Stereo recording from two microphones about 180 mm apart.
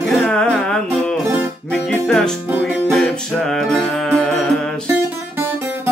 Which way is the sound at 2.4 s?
10° right (ahead or behind).